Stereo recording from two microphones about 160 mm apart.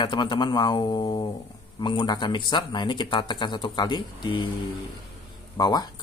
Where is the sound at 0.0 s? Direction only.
30° left (ahead or behind).